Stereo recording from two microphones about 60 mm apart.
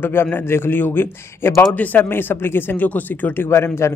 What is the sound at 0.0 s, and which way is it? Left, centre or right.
Speech, left.